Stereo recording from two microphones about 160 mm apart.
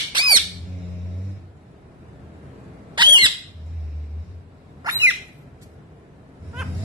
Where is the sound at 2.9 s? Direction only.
30° right (ahead or behind).